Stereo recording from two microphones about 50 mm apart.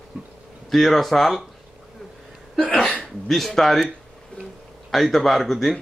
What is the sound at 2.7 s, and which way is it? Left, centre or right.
Hiccup, centre.